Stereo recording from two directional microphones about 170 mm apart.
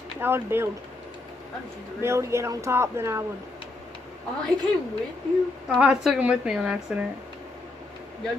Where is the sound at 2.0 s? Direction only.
15° right (ahead or behind).